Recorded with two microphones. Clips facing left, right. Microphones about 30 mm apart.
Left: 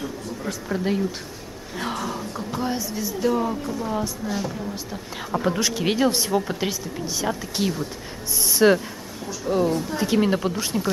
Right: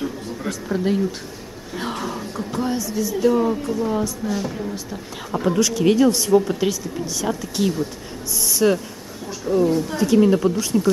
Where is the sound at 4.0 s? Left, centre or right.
Centre.